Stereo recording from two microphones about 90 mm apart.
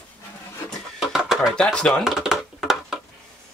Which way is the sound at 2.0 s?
5° right (ahead or behind).